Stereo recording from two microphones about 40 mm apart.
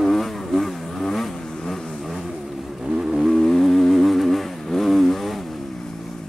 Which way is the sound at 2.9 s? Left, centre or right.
Centre.